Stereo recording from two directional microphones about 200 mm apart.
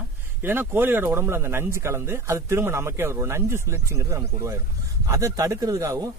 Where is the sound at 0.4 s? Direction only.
10° right (ahead or behind).